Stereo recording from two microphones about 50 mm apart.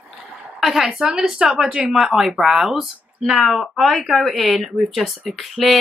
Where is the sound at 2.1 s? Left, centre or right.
Centre.